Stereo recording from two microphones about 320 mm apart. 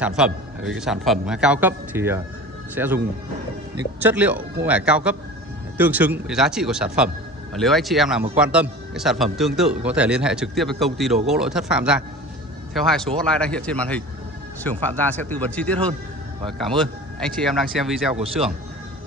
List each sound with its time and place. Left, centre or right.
0.0 s speech: centre
4.0 s speech: centre
18.1 s speech: centre